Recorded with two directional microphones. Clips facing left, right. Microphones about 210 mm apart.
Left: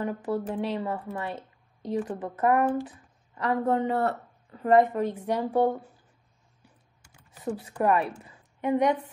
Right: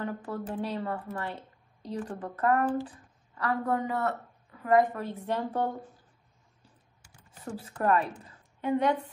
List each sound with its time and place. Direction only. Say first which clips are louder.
0.0 s speech: left 5 dB; 15° left (ahead or behind)
4.9 s speech: left 5 dB; 15° left (ahead or behind)
7.4 s a woman's voice: left 3 dB; 15° left (ahead or behind)